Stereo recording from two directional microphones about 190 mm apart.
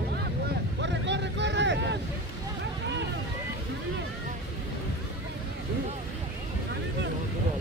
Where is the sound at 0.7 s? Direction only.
70° right (ahead or behind).